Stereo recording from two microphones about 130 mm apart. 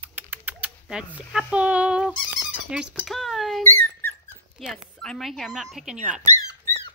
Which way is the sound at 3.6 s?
15° left (ahead or behind).